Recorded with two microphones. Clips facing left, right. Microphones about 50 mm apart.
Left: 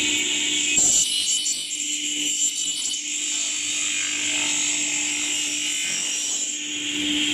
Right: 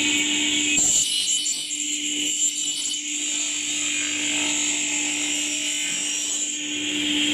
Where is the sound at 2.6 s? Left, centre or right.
Centre.